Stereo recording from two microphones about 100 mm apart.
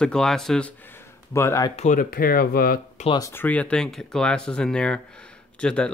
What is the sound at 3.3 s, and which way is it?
Speech, 15° left (ahead or behind).